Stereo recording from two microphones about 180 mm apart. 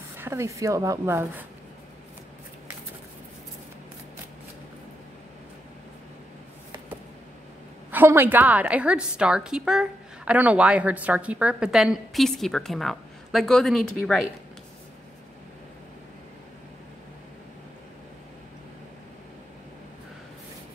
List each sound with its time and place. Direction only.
0.1 s a woman's voice: 15° right (ahead or behind)
7.9 s a woman's voice: 10° right (ahead or behind)